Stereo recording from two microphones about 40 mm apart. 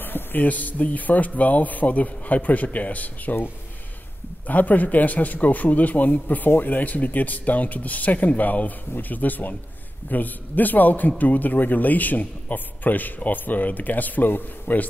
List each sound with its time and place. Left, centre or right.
0.0 s a sound: left
0.5 s a man's voice: left
4.5 s a man's voice: left